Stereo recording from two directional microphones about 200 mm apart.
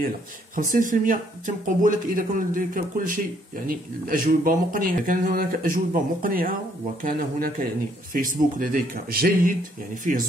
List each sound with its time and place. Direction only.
0.7 s speech: 40° right (ahead or behind)